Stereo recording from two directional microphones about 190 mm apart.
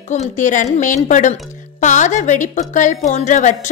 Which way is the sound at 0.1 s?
40° left (ahead or behind).